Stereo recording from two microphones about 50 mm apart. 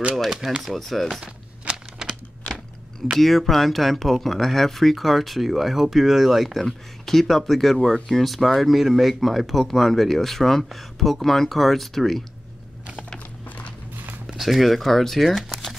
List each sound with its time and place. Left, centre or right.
0.4 s speech: centre
0.7 s speech: centre
1.2 s a sound: right
3.2 s speech: centre
14.2 s speech: centre